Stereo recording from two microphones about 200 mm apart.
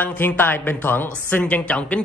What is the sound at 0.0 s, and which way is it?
Speech, 10° left (ahead or behind).